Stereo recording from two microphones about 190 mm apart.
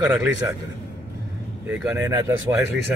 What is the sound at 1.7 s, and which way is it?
Speech, 10° right (ahead or behind).